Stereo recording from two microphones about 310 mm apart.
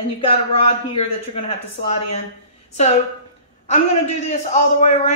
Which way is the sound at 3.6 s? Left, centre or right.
Left.